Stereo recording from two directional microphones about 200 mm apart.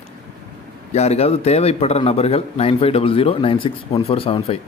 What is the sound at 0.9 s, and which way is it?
A man's voice, 30° left (ahead or behind).